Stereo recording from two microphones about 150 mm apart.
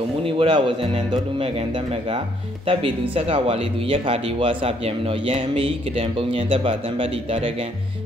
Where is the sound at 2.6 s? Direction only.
40° right (ahead or behind).